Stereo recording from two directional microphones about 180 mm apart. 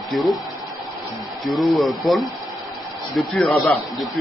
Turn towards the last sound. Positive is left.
turn(degrees=0)  # may be behind; listen again after turning